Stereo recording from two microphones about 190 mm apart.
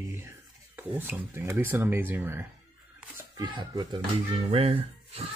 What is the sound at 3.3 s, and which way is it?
Speech, 20° right (ahead or behind).